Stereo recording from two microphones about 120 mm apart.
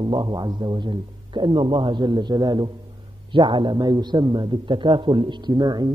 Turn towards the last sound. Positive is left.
turn(degrees=-35)  # may be behind; listen again after turning